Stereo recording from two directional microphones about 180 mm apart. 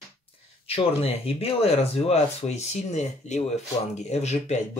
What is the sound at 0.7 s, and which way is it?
Speech, 30° left (ahead or behind).